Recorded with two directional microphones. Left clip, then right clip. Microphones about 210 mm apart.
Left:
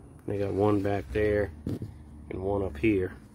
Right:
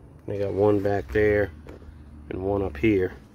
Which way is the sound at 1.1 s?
30° right (ahead or behind).